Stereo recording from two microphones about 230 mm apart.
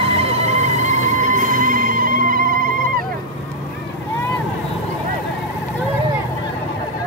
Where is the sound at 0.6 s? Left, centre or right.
Left.